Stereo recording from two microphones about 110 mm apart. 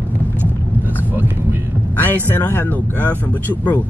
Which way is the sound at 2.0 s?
20° left (ahead or behind).